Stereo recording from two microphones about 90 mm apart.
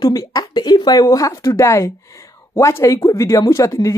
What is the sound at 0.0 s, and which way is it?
A woman's voice, 45° left (ahead or behind).